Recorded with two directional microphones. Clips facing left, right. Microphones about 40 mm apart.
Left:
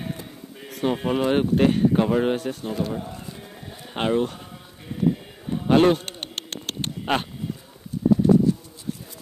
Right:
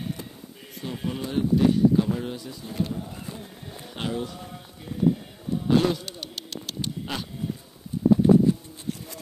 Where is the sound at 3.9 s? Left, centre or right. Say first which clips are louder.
Left 8 dB; left.